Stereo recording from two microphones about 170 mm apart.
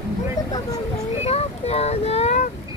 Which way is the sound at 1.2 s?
40° left (ahead or behind).